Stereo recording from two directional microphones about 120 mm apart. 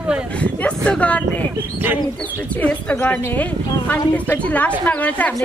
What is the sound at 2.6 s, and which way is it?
A woman's voice, 10° left (ahead or behind).